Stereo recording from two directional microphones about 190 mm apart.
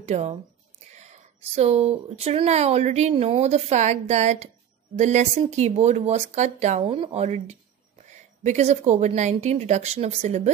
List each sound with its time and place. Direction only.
0.0 s speech: 35° right (ahead or behind)